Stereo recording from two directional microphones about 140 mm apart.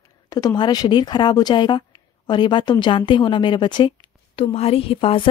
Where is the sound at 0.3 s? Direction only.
30° left (ahead or behind).